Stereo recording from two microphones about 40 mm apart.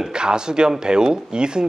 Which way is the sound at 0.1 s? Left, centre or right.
Centre.